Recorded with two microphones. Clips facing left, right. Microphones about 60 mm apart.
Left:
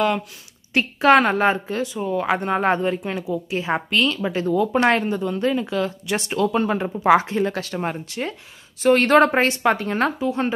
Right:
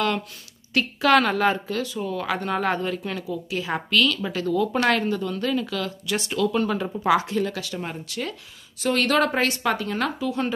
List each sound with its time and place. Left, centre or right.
0.7 s speech: left